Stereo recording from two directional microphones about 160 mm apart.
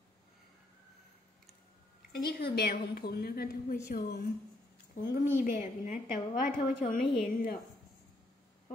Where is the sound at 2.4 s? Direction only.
80° left; by 5.2 s 65° left (ahead or behind).